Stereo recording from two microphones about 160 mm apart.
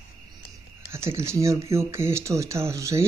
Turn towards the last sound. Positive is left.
turn(degrees=-20)  # may be behind; listen again after turning